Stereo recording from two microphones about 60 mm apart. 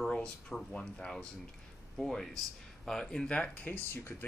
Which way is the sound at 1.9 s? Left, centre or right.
Centre.